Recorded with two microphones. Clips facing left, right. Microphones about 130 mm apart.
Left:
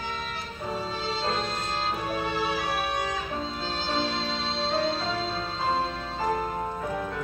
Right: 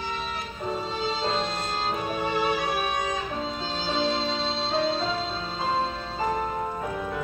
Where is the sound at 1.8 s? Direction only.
15° right (ahead or behind).